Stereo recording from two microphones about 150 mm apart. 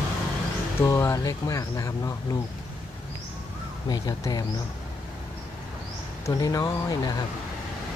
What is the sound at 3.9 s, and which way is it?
Speech, 25° left (ahead or behind).